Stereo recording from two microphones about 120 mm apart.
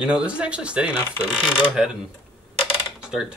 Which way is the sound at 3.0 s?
5° right (ahead or behind).